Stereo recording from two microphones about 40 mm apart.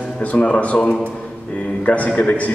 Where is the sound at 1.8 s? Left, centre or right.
Left.